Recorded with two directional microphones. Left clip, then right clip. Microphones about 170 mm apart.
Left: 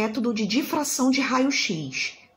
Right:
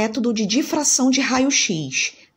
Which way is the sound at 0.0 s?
35° right (ahead or behind).